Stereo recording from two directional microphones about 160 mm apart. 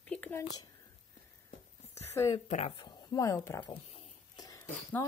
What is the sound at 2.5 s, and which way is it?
Speech, 45° left (ahead or behind).